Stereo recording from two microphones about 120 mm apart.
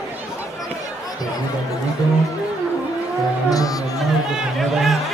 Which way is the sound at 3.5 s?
30° left (ahead or behind).